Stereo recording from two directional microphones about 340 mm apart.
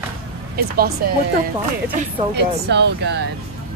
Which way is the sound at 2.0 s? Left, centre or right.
Right.